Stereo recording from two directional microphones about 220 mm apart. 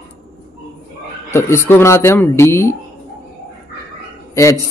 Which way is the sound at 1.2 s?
10° left (ahead or behind).